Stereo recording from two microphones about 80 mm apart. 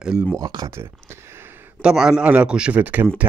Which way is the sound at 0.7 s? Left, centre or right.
Right.